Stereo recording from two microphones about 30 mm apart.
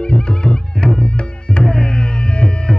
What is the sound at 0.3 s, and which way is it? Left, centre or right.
Music, left.